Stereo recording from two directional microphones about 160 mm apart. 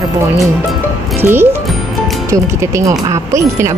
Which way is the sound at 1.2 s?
15° right (ahead or behind).